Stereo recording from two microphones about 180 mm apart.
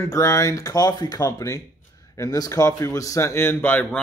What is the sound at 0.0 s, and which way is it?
A man's voice, 15° left (ahead or behind).